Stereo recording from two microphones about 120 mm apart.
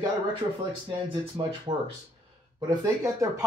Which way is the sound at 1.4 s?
45° right (ahead or behind).